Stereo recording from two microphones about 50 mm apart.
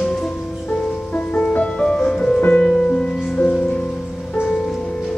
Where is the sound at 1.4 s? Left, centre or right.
Centre.